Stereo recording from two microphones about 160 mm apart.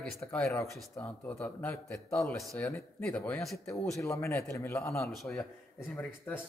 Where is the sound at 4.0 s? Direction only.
15° left (ahead or behind).